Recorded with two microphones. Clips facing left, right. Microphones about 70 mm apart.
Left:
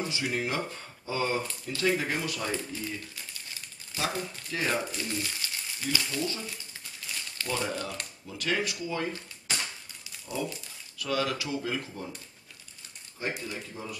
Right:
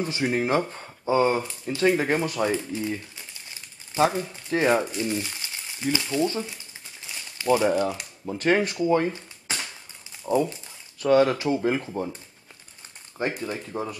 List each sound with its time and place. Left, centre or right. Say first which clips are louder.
0.0 s speech: right 6 dB; right
2.7 s speech: right 8 dB; right
3.9 s speech: right 10 dB; right
7.3 s crumpling: right 12 dB; centre
7.7 s speech: right 10 dB; centre
8.3 s speech: right 9 dB; right
11.0 s speech: right 11 dB; right
13.2 s speech: right 6 dB; right